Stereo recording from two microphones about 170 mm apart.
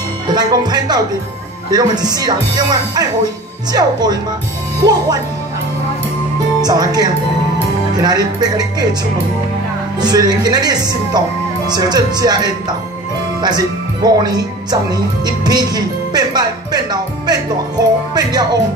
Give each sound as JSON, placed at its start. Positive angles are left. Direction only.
{"t": 0.3, "sound": "speech", "side_deg": -25}
{"t": 6.6, "sound": "speech", "side_deg": -20}
{"t": 9.9, "sound": "speech", "side_deg": -25}